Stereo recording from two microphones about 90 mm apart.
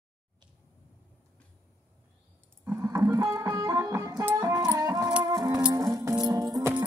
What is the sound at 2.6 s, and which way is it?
Music, 25° right (ahead or behind).